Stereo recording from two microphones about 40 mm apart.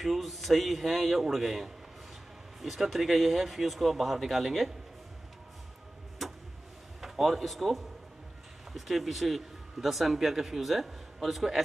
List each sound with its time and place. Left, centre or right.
0.0 s speech: centre
6.2 s vehicle: centre
7.0 s speech: centre